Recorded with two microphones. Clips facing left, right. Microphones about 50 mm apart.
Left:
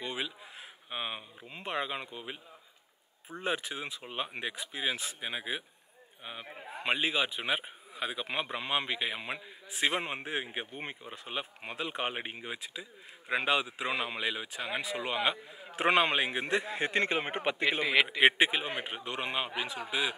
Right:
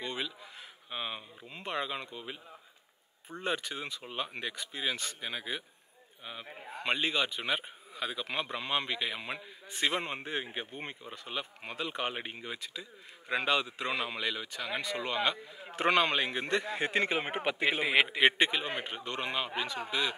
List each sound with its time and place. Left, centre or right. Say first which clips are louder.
0.0 s a sound: even; centre
0.4 s a man's voice: left 1 dB; centre
18.2 s a man's voice: left 1 dB; centre